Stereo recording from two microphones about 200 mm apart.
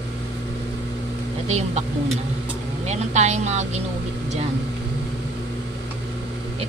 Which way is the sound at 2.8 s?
35° right (ahead or behind).